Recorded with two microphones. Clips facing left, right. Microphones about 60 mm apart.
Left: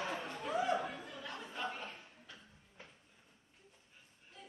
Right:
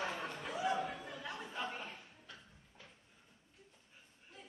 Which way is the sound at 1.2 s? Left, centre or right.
Centre.